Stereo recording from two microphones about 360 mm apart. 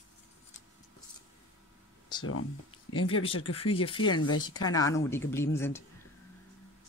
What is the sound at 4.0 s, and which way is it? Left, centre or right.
Speech, left.